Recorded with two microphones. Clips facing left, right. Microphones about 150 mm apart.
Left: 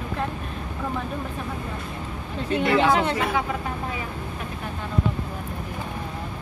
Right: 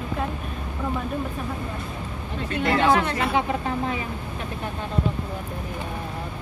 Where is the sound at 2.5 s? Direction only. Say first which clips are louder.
Left 1 dB; 25° left (ahead or behind).